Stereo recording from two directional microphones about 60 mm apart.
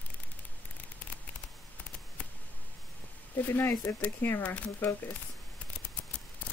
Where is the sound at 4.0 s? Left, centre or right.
Left.